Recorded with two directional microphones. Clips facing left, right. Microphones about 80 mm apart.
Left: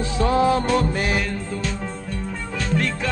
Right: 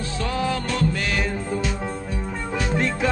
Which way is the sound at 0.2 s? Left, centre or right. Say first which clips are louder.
Left 7 dB; left.